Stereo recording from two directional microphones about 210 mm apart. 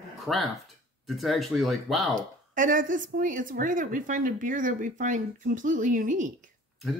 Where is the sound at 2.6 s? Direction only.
40° right (ahead or behind).